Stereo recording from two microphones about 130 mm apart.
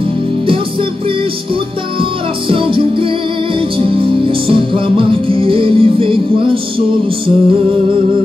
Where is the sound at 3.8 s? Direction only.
45° right (ahead or behind).